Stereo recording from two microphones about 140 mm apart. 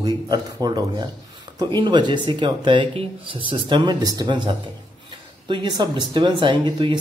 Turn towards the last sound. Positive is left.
turn(degrees=-35)  # may be behind; listen again after turning